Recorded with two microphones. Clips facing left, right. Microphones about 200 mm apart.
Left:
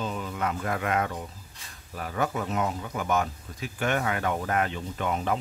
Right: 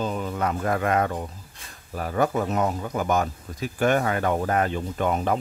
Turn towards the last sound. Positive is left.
turn(degrees=-45)  # may be behind; listen again after turning